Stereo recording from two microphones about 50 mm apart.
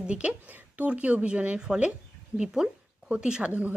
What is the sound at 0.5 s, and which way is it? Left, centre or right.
A woman's voice, right.